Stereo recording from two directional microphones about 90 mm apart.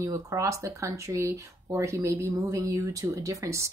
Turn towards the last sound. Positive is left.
turn(degrees=-35)  # may be behind; listen again after turning